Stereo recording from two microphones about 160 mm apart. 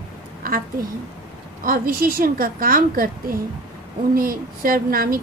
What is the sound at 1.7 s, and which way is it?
A woman's voice, 65° right (ahead or behind).